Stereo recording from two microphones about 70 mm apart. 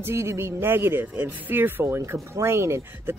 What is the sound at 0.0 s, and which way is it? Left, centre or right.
Speech, right.